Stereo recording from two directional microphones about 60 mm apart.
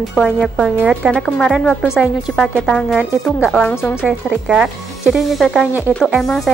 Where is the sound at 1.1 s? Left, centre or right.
Centre.